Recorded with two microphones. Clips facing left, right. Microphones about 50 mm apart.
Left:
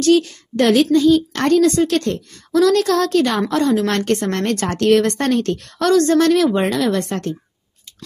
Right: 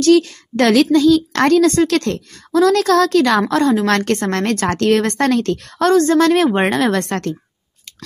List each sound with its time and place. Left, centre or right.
0.0 s a woman's voice: right
0.7 s a woman's voice: right
2.5 s a woman's voice: right